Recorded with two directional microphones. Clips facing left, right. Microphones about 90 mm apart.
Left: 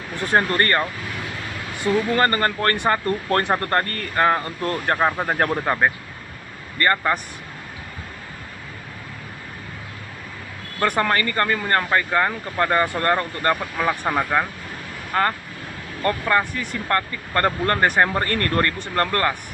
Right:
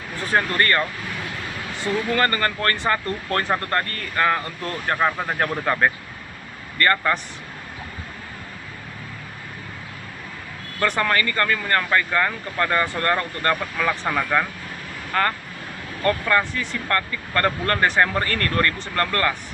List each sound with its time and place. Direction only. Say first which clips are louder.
0.3 s speech: left 1 dB; 35° left (ahead or behind)
2.0 s speech: left 2 dB; 30° left (ahead or behind)
4.1 s speech: left 2 dB; 30° left (ahead or behind)
4.9 s speech: even; 25° left (ahead or behind)
5.6 s speech: even; 15° left (ahead or behind)
11.0 s speech: left 1 dB; 25° left (ahead or behind)